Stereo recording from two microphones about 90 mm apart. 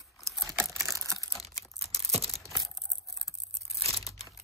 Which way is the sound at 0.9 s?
35° right (ahead or behind).